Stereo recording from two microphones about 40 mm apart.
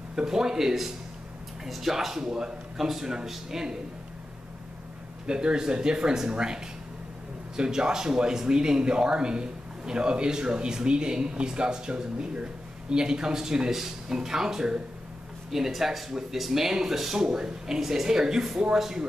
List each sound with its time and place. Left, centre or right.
0.1 s speech: centre
5.2 s speech: right